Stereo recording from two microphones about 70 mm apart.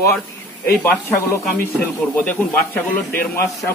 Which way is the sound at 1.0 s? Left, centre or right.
Left.